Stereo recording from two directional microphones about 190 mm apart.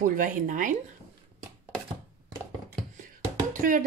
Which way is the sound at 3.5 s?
45° right (ahead or behind).